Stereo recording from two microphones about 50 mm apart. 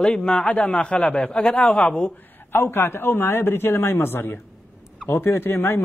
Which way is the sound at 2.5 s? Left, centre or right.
Left.